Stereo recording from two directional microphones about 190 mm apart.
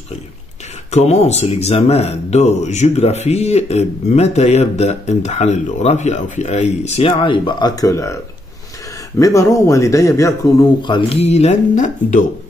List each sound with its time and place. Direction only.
0.9 s speech: 35° left (ahead or behind); by 8.2 s 15° left (ahead or behind)
9.2 s a man's voice: 15° left (ahead or behind); by 12.3 s 40° left (ahead or behind)